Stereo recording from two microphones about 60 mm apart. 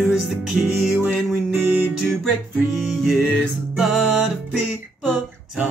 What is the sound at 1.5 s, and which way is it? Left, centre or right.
Music, right.